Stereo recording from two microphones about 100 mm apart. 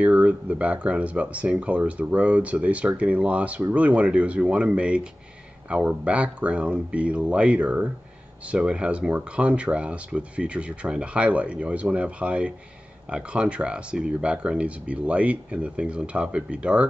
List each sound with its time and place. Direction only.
0.0 s speech: 15° right (ahead or behind)